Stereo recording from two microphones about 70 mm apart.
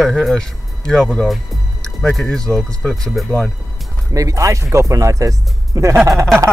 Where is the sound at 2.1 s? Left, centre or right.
Centre.